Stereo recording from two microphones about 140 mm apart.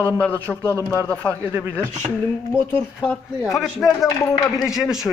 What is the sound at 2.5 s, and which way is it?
Speech, 15° left (ahead or behind).